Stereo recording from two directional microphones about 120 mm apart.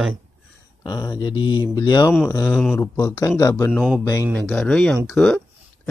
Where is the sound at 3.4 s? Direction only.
25° left (ahead or behind).